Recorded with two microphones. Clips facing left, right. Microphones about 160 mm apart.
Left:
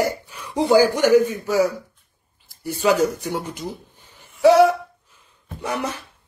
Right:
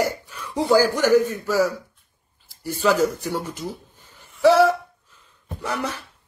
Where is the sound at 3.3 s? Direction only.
15° left (ahead or behind).